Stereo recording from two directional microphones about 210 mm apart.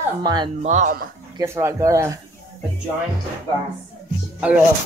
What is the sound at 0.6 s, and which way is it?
Speech, 35° right (ahead or behind).